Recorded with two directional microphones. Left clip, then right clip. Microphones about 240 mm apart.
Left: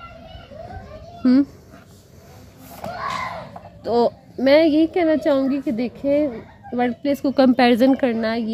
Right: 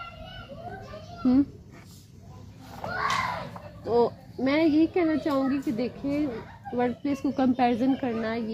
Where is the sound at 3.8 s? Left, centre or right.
Left.